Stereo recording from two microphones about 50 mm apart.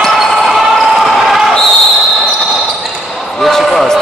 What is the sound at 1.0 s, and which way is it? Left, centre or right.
Basketball bounce, centre.